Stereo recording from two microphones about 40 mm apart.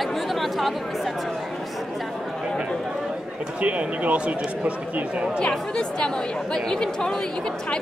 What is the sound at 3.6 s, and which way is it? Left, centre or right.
Speech, right.